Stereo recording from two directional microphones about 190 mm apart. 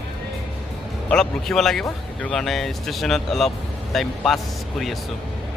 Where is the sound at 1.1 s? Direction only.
5° left (ahead or behind).